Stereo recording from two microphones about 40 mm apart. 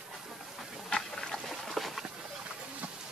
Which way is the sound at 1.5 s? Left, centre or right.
Centre.